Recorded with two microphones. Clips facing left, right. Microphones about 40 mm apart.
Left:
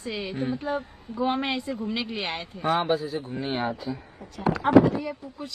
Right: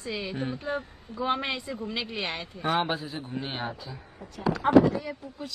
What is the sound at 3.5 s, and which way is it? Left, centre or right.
Speech, left.